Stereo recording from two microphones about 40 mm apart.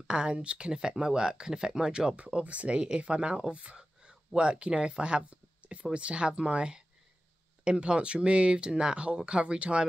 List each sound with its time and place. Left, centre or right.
0.0 s speech: right